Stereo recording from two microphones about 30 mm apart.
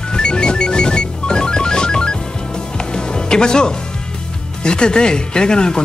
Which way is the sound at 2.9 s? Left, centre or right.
Left.